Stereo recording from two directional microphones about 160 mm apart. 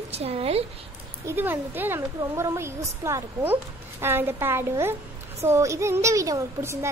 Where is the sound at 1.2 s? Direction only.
15° right (ahead or behind).